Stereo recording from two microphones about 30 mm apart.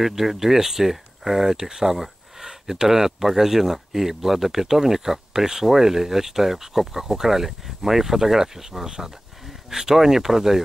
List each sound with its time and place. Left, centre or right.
0.0 s speech: centre